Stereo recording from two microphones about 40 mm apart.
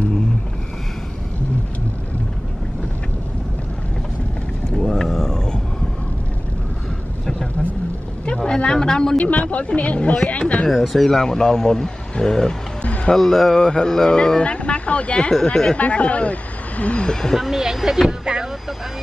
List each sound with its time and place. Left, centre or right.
4.6 s a sound: centre
8.4 s a sound: left
9.1 s speech: left
10.7 s speech: centre
12.8 s music: left
13.1 s speech: centre
13.6 s speech: centre
15.8 s speech: left; by 17.4 s centre
17.4 s speech: centre
18.2 s speech: centre